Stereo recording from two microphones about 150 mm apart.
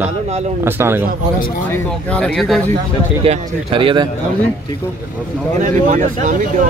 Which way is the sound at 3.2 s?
35° right (ahead or behind).